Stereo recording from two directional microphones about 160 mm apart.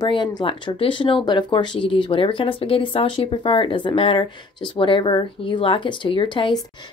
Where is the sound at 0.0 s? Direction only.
30° left (ahead or behind).